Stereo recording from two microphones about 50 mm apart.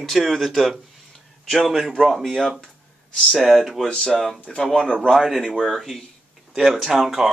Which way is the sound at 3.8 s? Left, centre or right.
Centre.